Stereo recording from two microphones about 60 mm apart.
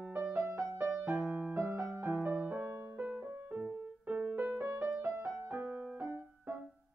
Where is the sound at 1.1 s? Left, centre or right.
Right.